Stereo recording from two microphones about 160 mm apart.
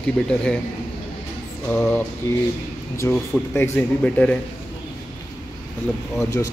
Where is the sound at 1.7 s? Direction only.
5° left (ahead or behind).